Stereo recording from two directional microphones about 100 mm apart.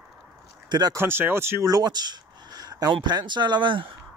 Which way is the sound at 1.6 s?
40° right (ahead or behind).